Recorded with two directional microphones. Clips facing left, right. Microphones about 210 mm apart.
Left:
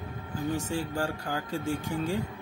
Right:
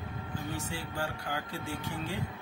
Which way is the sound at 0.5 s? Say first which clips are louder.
Left 7 dB; 45° left (ahead or behind).